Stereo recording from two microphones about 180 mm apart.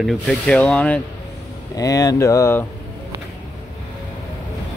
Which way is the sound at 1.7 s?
20° left (ahead or behind).